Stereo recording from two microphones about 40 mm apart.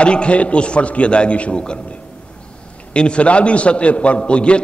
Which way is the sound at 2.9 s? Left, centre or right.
Left.